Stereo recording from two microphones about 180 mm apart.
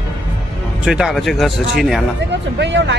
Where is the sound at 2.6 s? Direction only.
80° right.